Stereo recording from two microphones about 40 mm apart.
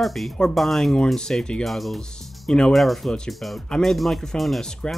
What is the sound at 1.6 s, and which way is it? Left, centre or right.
Speech, centre.